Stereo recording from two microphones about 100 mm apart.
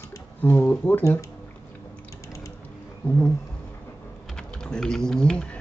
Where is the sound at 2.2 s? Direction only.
35° left (ahead or behind).